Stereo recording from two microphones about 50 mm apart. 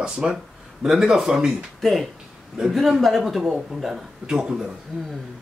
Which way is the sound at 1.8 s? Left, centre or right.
Centre.